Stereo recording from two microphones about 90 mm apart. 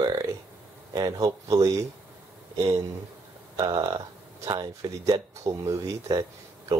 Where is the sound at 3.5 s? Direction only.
60° right (ahead or behind).